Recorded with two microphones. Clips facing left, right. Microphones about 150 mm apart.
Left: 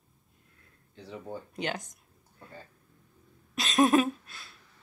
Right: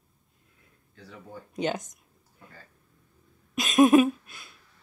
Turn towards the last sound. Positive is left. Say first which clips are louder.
# right 6 dB
turn(degrees=-15)  # may be behind; listen again after turning